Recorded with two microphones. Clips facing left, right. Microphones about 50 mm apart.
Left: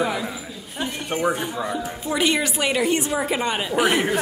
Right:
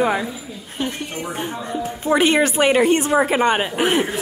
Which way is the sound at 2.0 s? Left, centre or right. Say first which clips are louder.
Right 6 dB; right.